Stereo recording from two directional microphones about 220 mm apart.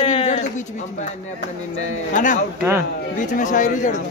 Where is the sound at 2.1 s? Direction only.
35° left (ahead or behind).